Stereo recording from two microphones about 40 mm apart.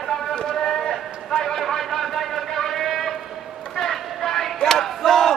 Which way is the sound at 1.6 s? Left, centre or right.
Centre.